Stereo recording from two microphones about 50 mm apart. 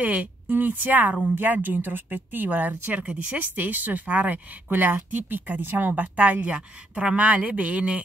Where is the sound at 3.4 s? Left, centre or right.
Right.